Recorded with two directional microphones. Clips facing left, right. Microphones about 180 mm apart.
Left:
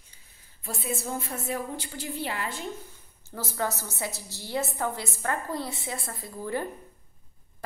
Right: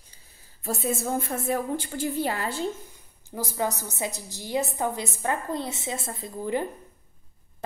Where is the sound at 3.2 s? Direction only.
15° right (ahead or behind).